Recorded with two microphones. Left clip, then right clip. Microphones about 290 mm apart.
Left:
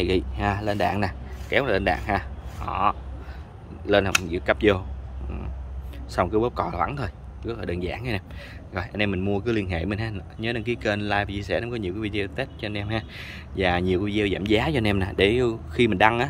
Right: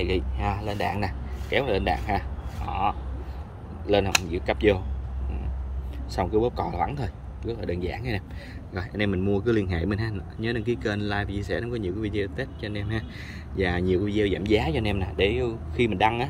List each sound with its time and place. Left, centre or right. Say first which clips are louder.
0.0 s speech: left 3 dB; centre
0.6 s speech: left 4 dB; left
1.0 s speech: left 3 dB; centre
3.8 s speech: left 2 dB; centre
6.1 s speech: left 2 dB; centre